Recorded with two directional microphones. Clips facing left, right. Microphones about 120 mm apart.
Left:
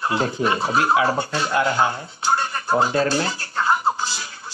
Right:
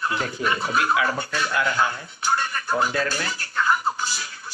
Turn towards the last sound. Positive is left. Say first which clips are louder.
# left 2 dB
turn(degrees=30)  # may be behind; listen again after turning